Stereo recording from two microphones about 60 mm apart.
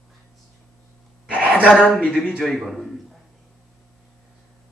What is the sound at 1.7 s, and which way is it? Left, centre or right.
Speech, centre.